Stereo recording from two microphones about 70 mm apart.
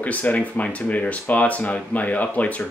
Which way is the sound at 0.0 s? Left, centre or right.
Left.